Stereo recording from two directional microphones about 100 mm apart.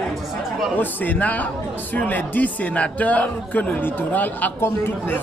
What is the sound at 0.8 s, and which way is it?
Speech, 15° left (ahead or behind).